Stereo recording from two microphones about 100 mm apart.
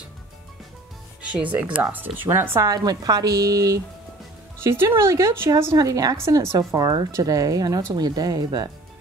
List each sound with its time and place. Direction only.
1.2 s speech: 15° right (ahead or behind)
2.7 s speech: 40° right (ahead or behind)
5.8 s speech: 35° right (ahead or behind)
6.7 s speech: 40° right (ahead or behind)